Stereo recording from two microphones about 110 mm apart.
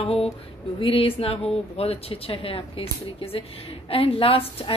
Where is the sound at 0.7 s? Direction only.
55° left (ahead or behind).